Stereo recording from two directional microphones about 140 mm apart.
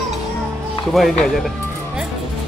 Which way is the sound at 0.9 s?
Centre (ahead or behind).